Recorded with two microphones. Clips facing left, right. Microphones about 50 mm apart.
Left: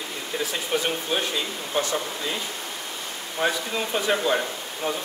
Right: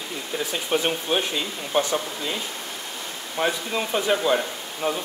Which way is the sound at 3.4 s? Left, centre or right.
Centre.